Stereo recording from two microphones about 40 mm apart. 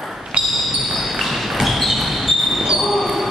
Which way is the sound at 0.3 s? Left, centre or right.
Right.